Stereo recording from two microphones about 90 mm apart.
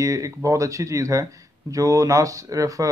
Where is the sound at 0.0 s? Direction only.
35° right (ahead or behind).